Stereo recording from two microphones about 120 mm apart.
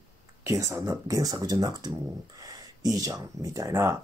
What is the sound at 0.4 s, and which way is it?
Speech, 25° right (ahead or behind).